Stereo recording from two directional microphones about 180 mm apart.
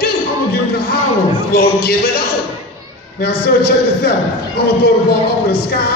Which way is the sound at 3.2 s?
65° left (ahead or behind).